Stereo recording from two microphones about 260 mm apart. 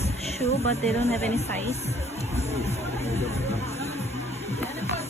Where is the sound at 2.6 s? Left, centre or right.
Left.